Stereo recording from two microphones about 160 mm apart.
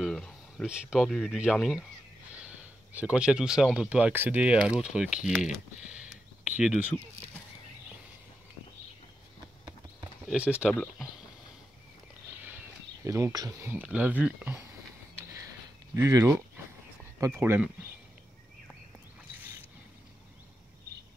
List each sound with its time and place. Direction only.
0.0 s a sound: 5° left (ahead or behind)
0.7 s speech: 5° right (ahead or behind)
10.2 s speech: 5° right (ahead or behind)
10.7 s speech: 5° left (ahead or behind)
13.0 s speech: 20° right (ahead or behind)
13.6 s speech: 10° right (ahead or behind)
15.9 s speech: 20° right (ahead or behind)